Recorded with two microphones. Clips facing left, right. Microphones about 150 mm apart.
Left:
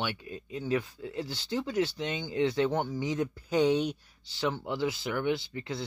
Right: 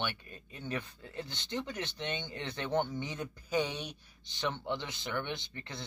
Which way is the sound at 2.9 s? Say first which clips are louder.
Left 8 dB; 10° left (ahead or behind).